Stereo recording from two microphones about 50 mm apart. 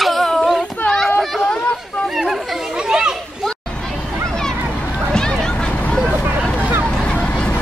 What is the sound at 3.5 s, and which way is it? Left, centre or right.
Hubbub, centre.